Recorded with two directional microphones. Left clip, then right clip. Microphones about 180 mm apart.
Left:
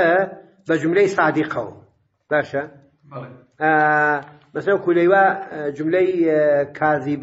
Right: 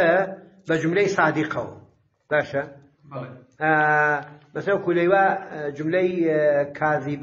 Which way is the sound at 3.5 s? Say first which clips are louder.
Left 3 dB; 30° left (ahead or behind).